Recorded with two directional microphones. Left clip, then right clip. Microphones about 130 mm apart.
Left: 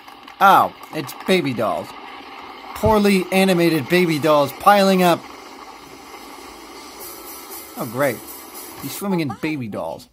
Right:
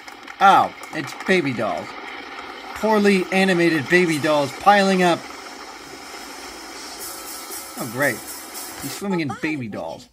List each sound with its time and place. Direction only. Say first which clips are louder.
0.4 s speech: left 1 dB; 25° left (ahead or behind)
8.8 s speech: left 2 dB; 25° left (ahead or behind)